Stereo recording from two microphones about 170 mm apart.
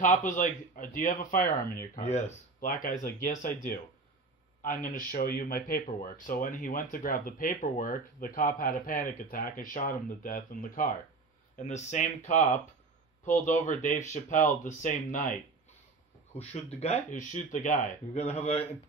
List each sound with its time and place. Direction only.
0.0 s speech: 50° left (ahead or behind)
16.3 s speech: 40° left (ahead or behind)